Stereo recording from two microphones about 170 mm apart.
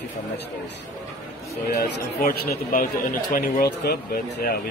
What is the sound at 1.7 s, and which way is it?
Speech, 60° left (ahead or behind).